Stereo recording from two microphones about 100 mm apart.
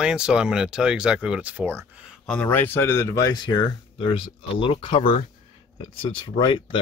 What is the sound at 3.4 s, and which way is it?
Speech, 50° left (ahead or behind).